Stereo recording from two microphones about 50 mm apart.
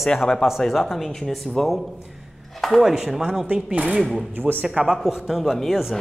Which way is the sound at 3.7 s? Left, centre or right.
Right.